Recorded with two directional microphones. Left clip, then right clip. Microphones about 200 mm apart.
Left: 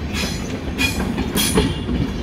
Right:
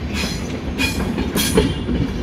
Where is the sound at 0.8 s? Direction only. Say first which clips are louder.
Even; 25° left (ahead or behind).